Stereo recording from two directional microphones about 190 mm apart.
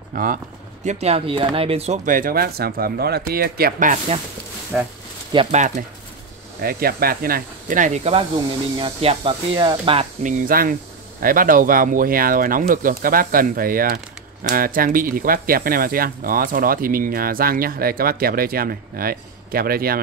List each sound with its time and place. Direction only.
0.1 s speech: 45° right (ahead or behind)
0.8 s speech: 35° right (ahead or behind)
4.7 s speech: 10° right (ahead or behind)
5.3 s speech: 30° right (ahead or behind)
6.6 s speech: 50° right (ahead or behind); by 10.0 s 25° right (ahead or behind)
10.2 s speech: 45° right (ahead or behind)